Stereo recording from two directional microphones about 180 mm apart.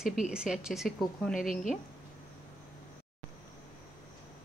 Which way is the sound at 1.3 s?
50° left (ahead or behind).